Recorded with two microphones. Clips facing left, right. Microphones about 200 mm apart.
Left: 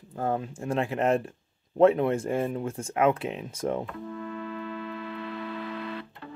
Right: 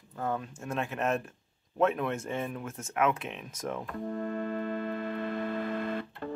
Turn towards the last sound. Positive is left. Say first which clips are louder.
# right 3 dB
turn(degrees=-50)  # may be behind; listen again after turning